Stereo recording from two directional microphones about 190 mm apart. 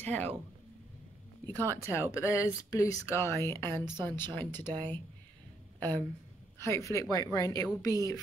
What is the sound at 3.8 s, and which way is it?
Speech, 20° right (ahead or behind).